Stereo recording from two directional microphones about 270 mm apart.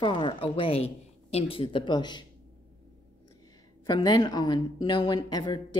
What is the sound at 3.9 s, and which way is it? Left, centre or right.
A woman's voice, centre.